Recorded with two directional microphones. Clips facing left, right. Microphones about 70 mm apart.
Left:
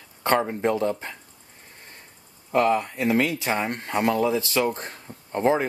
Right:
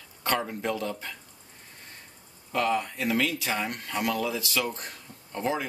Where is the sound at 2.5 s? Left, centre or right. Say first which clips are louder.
Left 6 dB; left.